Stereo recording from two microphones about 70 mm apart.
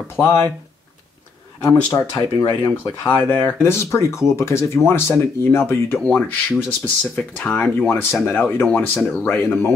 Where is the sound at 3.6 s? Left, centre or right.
Left.